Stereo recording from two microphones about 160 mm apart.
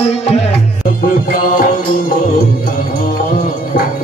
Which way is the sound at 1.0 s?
65° left (ahead or behind).